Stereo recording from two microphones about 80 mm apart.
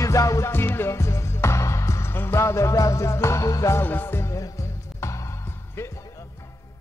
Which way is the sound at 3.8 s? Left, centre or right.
Left.